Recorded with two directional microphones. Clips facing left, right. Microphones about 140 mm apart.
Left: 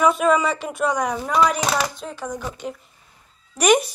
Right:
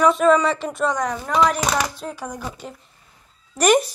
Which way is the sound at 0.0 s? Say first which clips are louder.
Right 2 dB; 5° left (ahead or behind).